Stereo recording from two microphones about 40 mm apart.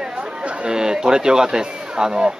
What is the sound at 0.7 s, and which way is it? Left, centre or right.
A man's voice, centre.